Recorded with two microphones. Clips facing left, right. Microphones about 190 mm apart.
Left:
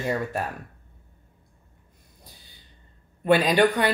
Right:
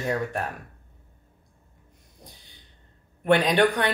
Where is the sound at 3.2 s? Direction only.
5° left (ahead or behind).